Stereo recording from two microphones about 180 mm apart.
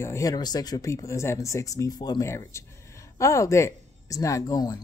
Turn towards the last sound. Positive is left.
turn(degrees=20)  # may be behind; listen again after turning